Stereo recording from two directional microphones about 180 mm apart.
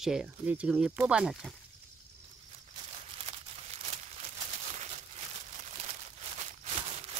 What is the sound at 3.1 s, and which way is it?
Crumpling, 35° right (ahead or behind).